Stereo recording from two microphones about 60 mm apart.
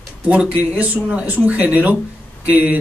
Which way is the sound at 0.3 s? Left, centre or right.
Right.